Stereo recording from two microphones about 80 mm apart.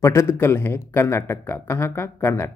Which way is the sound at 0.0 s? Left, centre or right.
Left.